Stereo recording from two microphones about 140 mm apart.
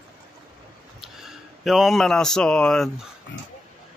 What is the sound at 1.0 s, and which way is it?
Speech, centre (ahead or behind).